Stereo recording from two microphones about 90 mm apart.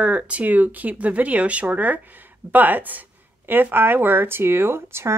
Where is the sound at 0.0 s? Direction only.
15° right (ahead or behind).